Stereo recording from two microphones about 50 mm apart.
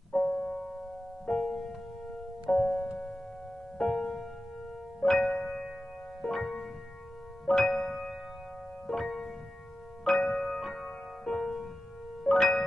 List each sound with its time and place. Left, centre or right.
0.1 s keyboard: centre
1.2 s music: centre
2.5 s music: centre
3.9 s music: centre